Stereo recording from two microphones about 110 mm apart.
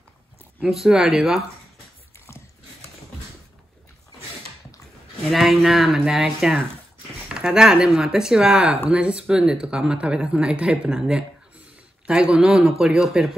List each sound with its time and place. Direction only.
0.7 s speech: 5° right (ahead or behind)
2.1 s biting: 25° left (ahead or behind)
5.3 s speech: centre (ahead or behind)